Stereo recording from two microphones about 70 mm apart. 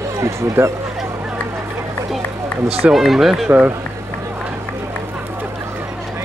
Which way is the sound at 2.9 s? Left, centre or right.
Centre.